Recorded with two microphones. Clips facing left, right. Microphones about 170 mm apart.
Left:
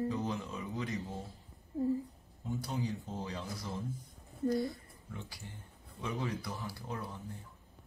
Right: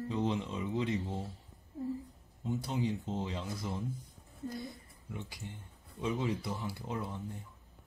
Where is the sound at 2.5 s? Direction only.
25° right (ahead or behind).